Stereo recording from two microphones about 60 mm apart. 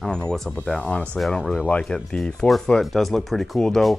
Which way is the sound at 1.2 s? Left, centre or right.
Centre.